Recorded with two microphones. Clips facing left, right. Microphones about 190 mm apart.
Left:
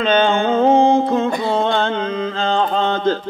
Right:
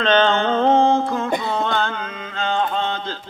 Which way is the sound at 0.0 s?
10° left (ahead or behind).